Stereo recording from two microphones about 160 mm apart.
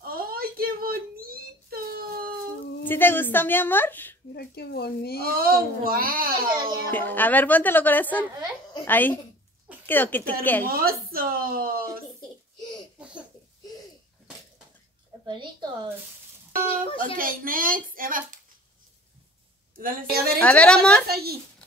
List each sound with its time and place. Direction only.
0.0 s a sound: 65° right (ahead or behind)
2.8 s a woman's voice: 15° left (ahead or behind)
4.3 s speech: 80° left
5.2 s a child's voice: 65° right (ahead or behind)
6.9 s a woman's voice: 10° left (ahead or behind)
10.7 s a child's voice: 65° right (ahead or behind)
13.0 s laughter: 5° right (ahead or behind)
15.2 s a woman's voice: 30° right (ahead or behind)
17.0 s speech: 60° right (ahead or behind)
19.8 s a child's voice: 65° right (ahead or behind)
20.3 s a woman's voice: 10° left (ahead or behind)
21.1 s a child's voice: 75° right (ahead or behind)